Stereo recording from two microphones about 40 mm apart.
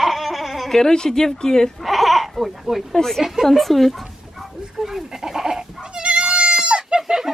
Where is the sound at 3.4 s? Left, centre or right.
Centre; by 7.0 s right.